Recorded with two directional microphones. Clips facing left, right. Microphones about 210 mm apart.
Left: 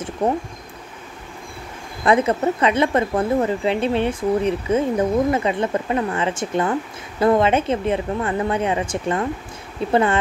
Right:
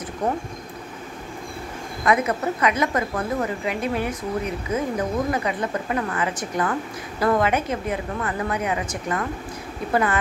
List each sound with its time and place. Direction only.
0.2 s a woman's voice: 25° left (ahead or behind)
2.0 s a woman's voice: 30° left (ahead or behind)